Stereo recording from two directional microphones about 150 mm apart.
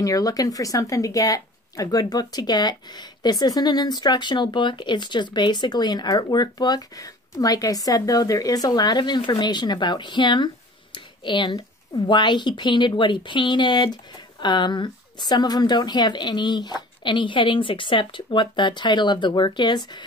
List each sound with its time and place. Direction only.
0.0 s speech: 25° left (ahead or behind)